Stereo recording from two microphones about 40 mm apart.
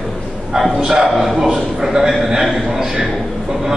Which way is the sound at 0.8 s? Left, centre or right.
Centre.